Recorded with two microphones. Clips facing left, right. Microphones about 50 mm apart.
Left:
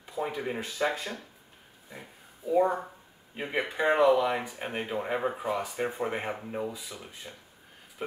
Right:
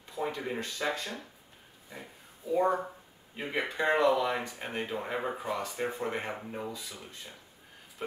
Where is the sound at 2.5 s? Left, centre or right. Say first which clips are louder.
Left 2 dB; centre.